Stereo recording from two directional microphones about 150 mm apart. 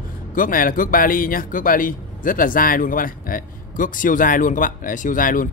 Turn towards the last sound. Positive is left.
turn(degrees=65)  # may be behind; listen again after turning